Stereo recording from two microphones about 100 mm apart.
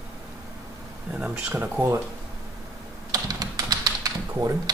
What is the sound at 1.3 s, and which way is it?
Speech, 20° right (ahead or behind).